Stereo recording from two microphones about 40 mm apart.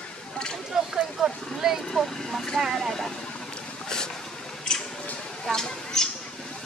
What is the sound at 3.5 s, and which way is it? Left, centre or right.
Vehicle, centre.